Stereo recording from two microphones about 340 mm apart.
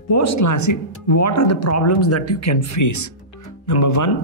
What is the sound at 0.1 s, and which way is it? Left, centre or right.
Speech, left.